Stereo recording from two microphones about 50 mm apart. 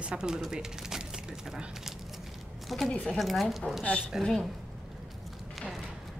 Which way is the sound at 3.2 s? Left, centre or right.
Centre.